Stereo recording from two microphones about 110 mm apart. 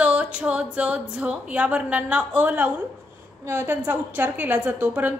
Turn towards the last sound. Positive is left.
turn(degrees=-15)  # may be behind; listen again after turning